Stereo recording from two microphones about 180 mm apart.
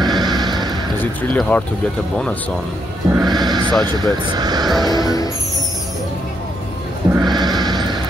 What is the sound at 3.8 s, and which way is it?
Speech, 25° right (ahead or behind).